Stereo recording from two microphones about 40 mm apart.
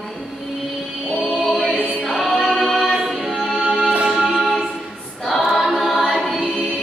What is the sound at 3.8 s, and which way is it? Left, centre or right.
Music, right.